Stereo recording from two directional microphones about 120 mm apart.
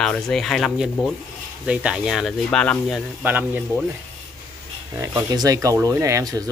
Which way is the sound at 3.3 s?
15° right (ahead or behind).